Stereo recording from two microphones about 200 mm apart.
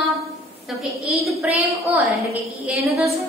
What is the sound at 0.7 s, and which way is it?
Speech, centre (ahead or behind).